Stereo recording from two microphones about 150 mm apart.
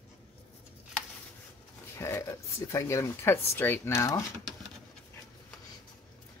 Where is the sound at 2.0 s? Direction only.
20° left (ahead or behind).